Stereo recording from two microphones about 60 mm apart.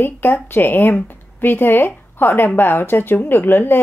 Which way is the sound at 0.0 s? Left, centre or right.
Left.